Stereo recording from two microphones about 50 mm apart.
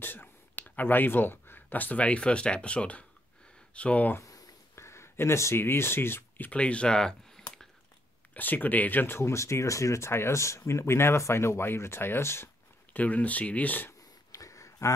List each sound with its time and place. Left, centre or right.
0.0 s speech: left
4.7 s speech: left
6.5 s speech: left
8.4 s speech: left
12.9 s speech: left
13.8 s a sound: left